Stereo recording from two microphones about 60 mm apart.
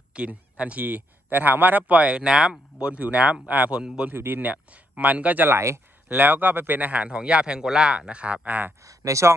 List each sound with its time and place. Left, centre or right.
0.1 s a man's voice: right
3.7 s speech: centre
4.1 s a man's voice: right
5.5 s speech: right
6.0 s a man's voice: right
8.8 s speech: right